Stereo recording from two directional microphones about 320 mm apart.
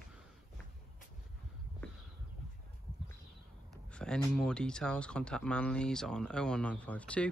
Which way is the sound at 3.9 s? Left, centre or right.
Centre.